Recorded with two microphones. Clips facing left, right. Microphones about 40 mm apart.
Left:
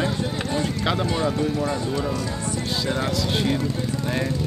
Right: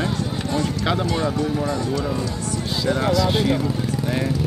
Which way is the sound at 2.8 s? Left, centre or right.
Centre.